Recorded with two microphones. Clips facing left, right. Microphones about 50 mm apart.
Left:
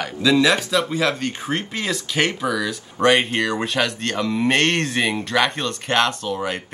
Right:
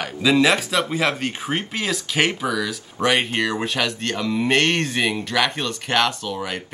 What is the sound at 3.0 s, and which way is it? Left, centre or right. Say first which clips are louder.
Speech: left 4 dB; left.